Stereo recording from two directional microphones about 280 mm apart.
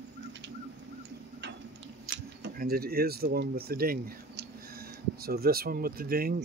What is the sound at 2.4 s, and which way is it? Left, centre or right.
Speech, right.